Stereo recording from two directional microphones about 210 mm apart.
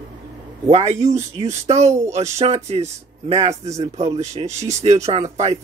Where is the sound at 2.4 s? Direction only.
30° right (ahead or behind).